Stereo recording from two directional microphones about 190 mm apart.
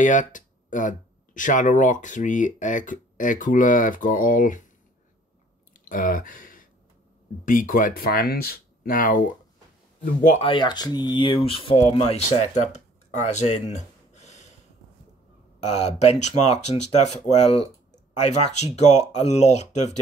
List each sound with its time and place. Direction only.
0.0 s speech: 40° left (ahead or behind)
5.7 s a sound: 45° left (ahead or behind)
7.4 s speech: 45° left (ahead or behind)
10.2 s speech: 35° left (ahead or behind)
12.7 s a sound: 40° left (ahead or behind)
15.8 s speech: 35° left (ahead or behind)